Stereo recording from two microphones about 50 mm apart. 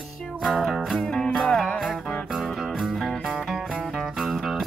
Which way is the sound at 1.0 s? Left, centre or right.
Centre.